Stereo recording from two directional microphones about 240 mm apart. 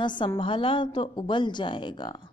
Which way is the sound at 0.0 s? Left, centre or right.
Centre.